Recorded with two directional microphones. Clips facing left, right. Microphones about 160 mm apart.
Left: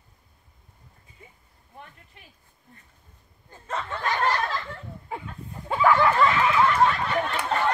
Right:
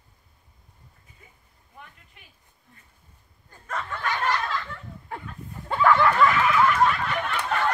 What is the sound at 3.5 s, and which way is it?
Snicker, 25° left (ahead or behind).